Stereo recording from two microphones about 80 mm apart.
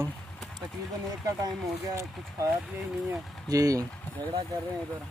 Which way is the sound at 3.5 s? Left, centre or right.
Right.